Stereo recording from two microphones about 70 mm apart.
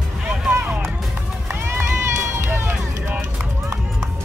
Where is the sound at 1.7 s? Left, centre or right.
Right.